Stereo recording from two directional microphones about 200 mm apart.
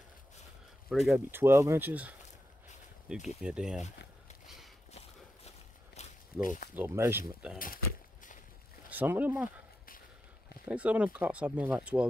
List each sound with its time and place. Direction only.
0.8 s speech: centre (ahead or behind)
1.3 s speech: 10° right (ahead or behind)
3.3 s speech: 5° right (ahead or behind)
6.0 s walk: 35° left (ahead or behind)
6.4 s speech: 40° left (ahead or behind)
6.7 s speech: 10° right (ahead or behind)
7.5 s a sound: 45° left (ahead or behind)
8.9 s speech: 10° right (ahead or behind)
10.7 s speech: 5° right (ahead or behind)